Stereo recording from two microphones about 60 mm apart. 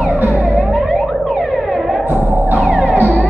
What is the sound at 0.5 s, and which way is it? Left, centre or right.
Music, centre.